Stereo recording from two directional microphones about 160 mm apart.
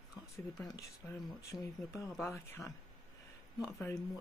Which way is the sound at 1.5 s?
20° left (ahead or behind).